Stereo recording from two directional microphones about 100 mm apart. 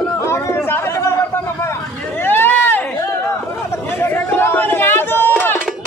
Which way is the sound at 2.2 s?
20° left (ahead or behind).